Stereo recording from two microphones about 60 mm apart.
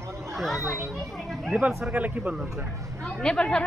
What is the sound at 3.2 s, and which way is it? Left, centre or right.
Speech, centre.